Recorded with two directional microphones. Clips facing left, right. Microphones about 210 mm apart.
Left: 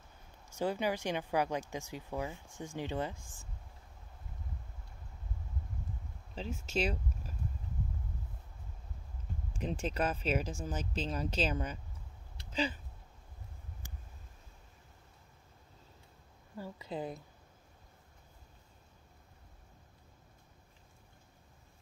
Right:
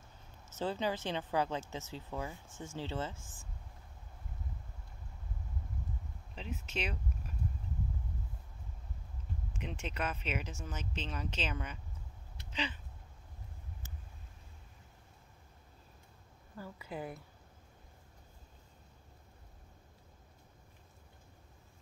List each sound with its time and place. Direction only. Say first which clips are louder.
0.5 s speech: left 2 dB; 15° left (ahead or behind)
6.3 s speech: left 5 dB; 35° left (ahead or behind)
9.6 s speech: left 6 dB; 35° left (ahead or behind)
16.5 s speech: left 3 dB; 25° left (ahead or behind)